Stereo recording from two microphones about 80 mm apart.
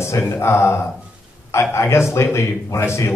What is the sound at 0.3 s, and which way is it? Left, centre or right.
A man's voice, left.